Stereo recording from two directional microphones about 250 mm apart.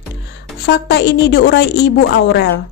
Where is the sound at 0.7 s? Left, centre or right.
Left.